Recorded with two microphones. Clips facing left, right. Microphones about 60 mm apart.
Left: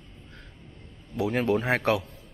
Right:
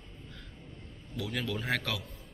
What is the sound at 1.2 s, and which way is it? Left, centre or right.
Speech, left.